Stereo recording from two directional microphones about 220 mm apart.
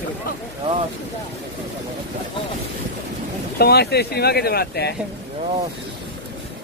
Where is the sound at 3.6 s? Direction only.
50° left (ahead or behind).